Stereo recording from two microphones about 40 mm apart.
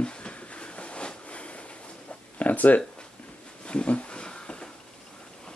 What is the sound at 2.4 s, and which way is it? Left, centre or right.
Speech, left.